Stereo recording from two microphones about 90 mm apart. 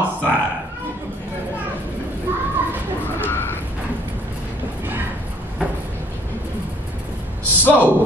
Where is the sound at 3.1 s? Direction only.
25° left (ahead or behind).